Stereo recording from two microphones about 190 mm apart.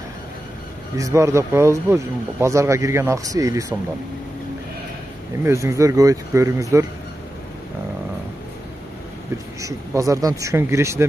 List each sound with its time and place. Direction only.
0.9 s speech: 15° right (ahead or behind)
5.4 s speech: 15° right (ahead or behind)
9.6 s speech: 15° right (ahead or behind)